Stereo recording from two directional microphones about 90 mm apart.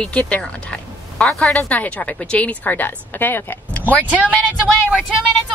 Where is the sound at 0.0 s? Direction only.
15° left (ahead or behind).